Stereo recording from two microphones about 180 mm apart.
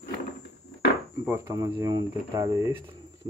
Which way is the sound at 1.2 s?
15° right (ahead or behind).